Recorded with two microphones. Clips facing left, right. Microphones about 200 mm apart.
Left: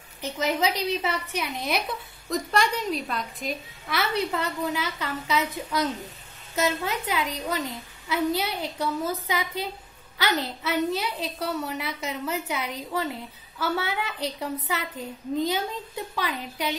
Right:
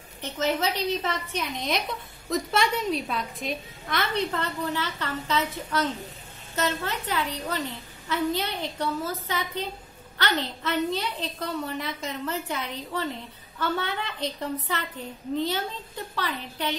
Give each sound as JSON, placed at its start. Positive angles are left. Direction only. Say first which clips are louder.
{"t": 0.2, "sound": "a woman's voice", "louder": "left 1 dB", "side_deg": 10}